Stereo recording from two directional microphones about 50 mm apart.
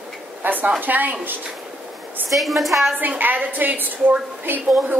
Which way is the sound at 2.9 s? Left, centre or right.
Right.